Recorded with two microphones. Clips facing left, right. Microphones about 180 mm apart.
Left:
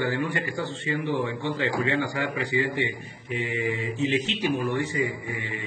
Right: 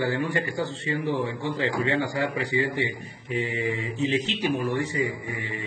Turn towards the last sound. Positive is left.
turn(degrees=-35)  # may be behind; listen again after turning